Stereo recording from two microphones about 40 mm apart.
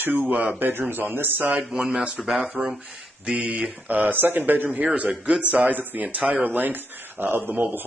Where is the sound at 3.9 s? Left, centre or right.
Right.